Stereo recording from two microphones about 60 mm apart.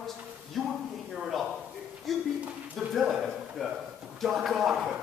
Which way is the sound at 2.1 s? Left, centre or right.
Centre.